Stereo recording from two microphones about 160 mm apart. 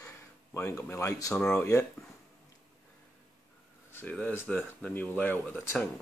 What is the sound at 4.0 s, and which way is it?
Speech, 10° left (ahead or behind).